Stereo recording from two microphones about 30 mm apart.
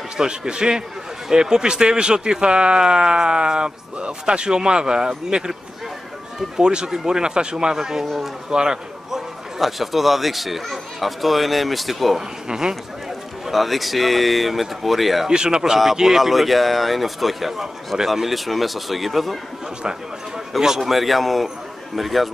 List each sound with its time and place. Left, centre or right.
0.2 s speech: right
6.5 s a man's voice: right
9.6 s speech: centre
12.4 s speech: right
13.5 s speech: centre
15.2 s speech: right
16.0 s speech: centre
20.8 s speech: centre